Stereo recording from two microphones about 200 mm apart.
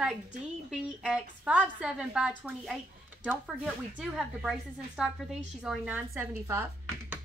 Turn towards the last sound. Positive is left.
turn(degrees=-10)  # may be behind; listen again after turning